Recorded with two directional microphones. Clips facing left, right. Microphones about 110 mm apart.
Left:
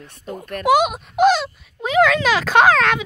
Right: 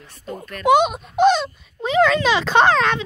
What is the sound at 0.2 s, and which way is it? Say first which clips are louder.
Speech: even; centre (ahead or behind).